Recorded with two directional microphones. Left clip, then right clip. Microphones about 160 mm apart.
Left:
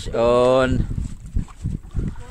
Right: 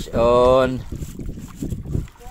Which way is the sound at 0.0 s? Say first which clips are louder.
Right 1 dB; 15° left (ahead or behind).